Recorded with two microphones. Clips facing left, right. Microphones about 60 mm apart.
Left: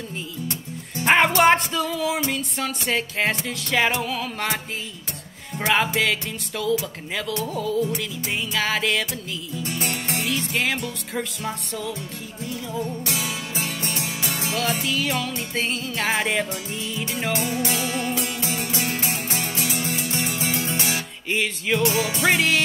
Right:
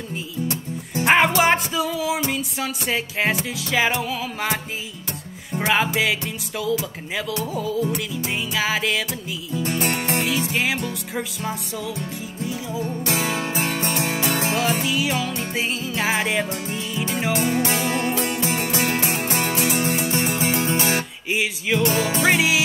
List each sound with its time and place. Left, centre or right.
1.0 s music: centre
5.9 s music: centre
9.6 s music: right
10.2 s music: centre
12.8 s music: right
14.9 s music: centre
17.4 s music: right
21.3 s music: centre
21.8 s music: right
22.3 s music: centre